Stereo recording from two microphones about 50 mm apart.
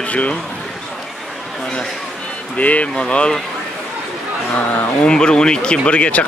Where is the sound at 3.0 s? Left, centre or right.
Centre.